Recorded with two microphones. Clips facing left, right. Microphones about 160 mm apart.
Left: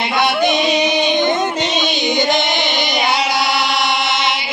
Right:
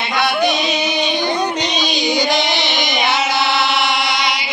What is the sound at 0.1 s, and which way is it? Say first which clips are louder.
Music: left 1 dB; 20° left (ahead or behind).